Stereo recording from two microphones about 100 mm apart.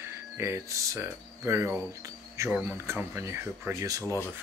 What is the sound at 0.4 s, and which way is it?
Speech, 30° right (ahead or behind).